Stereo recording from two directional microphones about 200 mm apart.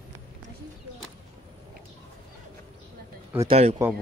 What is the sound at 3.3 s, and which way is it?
Speech, 30° right (ahead or behind).